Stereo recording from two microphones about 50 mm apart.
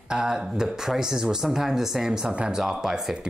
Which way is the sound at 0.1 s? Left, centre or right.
Centre.